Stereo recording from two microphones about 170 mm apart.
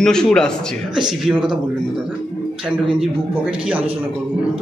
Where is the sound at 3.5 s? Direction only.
5° right (ahead or behind).